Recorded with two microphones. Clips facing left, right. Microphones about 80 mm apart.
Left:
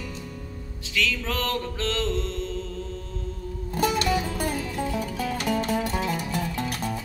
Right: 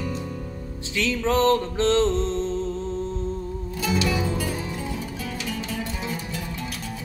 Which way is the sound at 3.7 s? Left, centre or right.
Left.